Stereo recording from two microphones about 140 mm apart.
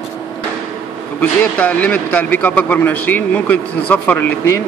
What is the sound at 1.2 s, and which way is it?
A man's voice, 10° left (ahead or behind).